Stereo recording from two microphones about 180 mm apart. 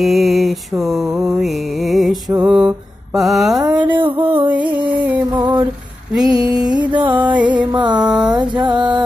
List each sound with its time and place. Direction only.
0.0 s mantra: centre (ahead or behind)
4.0 s a sound: 30° right (ahead or behind)
4.9 s music: 10° right (ahead or behind)
5.3 s female singing: 25° right (ahead or behind)
6.2 s a sound: 20° right (ahead or behind)
6.6 s music: 5° right (ahead or behind)
7.7 s music: 25° right (ahead or behind)
8.1 s a sound: 5° right (ahead or behind)
8.4 s music: 25° right (ahead or behind)